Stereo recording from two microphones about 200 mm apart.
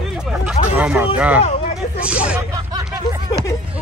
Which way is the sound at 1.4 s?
30° left (ahead or behind).